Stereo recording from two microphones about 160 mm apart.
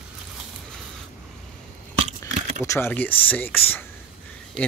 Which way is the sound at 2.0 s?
45° right (ahead or behind).